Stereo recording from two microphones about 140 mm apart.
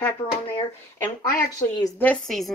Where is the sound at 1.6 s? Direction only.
15° left (ahead or behind).